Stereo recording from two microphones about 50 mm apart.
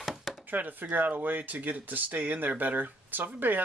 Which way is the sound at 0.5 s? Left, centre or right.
Right.